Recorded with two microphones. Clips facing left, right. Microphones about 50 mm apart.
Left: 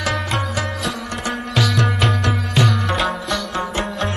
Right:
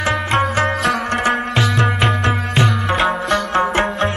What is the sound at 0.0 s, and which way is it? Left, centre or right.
Music, right.